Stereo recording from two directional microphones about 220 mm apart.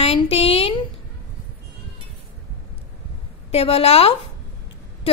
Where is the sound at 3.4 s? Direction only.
25° left (ahead or behind).